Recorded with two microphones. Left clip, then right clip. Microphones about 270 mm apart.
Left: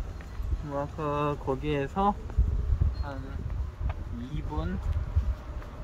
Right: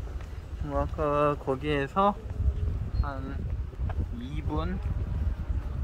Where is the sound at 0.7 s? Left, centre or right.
Right.